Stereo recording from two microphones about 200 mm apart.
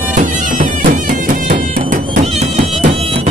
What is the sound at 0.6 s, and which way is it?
Music, 40° right (ahead or behind).